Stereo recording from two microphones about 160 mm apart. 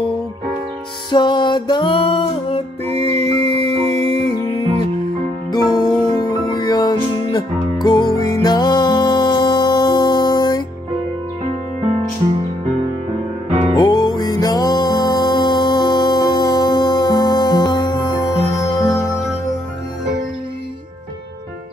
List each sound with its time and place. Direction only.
1.1 s music: 30° left (ahead or behind)
5.5 s music: 25° left (ahead or behind)
13.7 s music: 25° left (ahead or behind)